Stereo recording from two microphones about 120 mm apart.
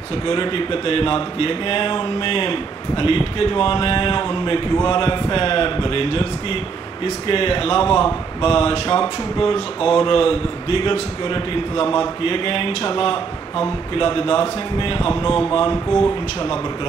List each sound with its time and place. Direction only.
0.3 s a man's voice: 45° left (ahead or behind)